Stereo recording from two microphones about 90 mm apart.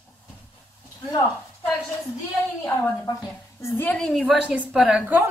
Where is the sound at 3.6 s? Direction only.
20° left (ahead or behind).